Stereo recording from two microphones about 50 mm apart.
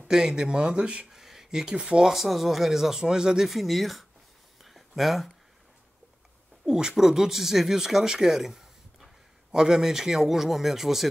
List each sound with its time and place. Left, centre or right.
0.0 s speech: centre
1.1 s a sound: centre
1.8 s speech: right
2.0 s speech: centre
3.4 s speech: centre
4.6 s a sound: centre
6.6 s a man's voice: centre